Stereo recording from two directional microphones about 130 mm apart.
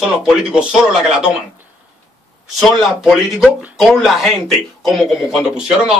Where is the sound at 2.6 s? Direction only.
Centre (ahead or behind).